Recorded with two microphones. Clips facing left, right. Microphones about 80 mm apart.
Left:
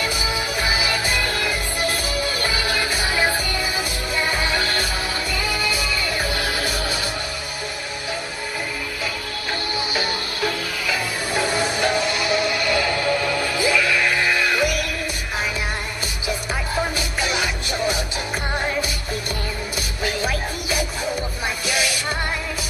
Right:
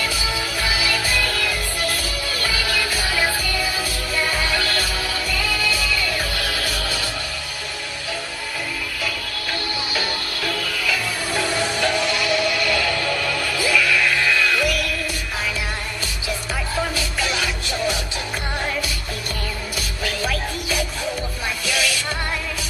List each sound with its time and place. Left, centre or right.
0.0 s music: left
9.9 s music: left
16.3 s music: left
20.0 s music: left